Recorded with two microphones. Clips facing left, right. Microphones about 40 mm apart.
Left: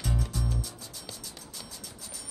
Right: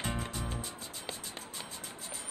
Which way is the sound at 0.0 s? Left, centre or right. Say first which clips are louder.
Left 3 dB; right.